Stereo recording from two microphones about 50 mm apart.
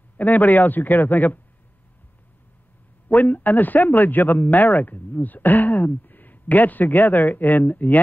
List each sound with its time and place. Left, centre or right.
0.2 s a man's voice: left
3.1 s a man's voice: left